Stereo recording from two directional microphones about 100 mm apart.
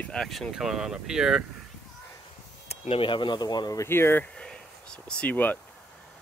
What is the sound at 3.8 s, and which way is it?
Speech, 25° left (ahead or behind).